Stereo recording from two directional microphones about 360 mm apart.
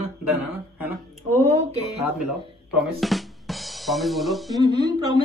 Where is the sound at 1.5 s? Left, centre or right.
Centre.